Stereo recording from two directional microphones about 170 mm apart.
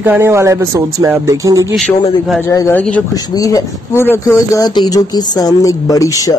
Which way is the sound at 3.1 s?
20° left (ahead or behind).